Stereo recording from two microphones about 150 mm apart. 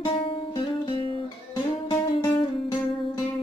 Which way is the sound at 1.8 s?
25° left (ahead or behind).